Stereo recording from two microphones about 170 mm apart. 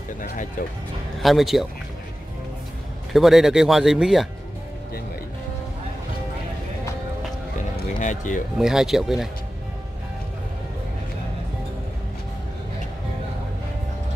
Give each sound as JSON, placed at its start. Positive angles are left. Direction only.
{"t": 1.2, "sound": "speech", "side_deg": 0}
{"t": 3.1, "sound": "speech", "side_deg": 0}
{"t": 8.0, "sound": "speech", "side_deg": 45}
{"t": 8.5, "sound": "speech", "side_deg": 0}